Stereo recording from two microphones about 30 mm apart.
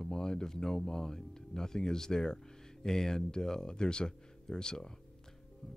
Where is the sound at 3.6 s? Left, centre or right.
Left.